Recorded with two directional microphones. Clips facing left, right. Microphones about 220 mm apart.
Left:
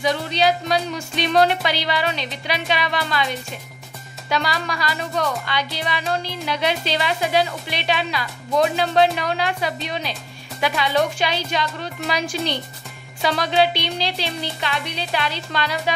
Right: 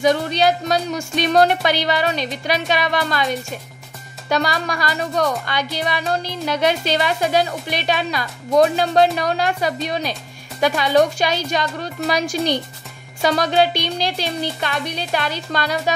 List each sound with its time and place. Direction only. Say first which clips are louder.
0.0 s speech: right 3 dB; 45° right (ahead or behind)